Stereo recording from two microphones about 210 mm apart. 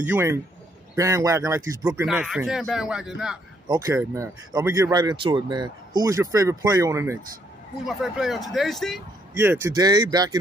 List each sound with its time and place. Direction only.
0.0 s speech: 10° right (ahead or behind)
2.0 s a man's voice: centre (ahead or behind)
3.6 s speech: 15° right (ahead or behind)
7.8 s a man's voice: centre (ahead or behind)
9.4 s speech: 10° right (ahead or behind)